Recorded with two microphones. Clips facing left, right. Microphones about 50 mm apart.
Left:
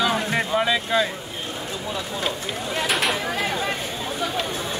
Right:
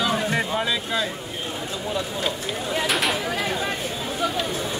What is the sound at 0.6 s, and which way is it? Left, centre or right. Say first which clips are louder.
Speech: left 3 dB; left.